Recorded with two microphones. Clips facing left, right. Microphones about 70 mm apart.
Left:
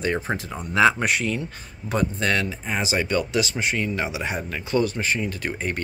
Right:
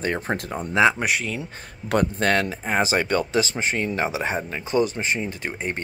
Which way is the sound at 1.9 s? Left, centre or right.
Right.